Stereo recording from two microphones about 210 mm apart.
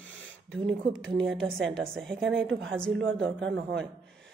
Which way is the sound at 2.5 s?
65° right (ahead or behind).